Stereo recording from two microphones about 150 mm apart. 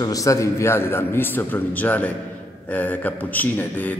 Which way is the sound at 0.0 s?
20° left (ahead or behind).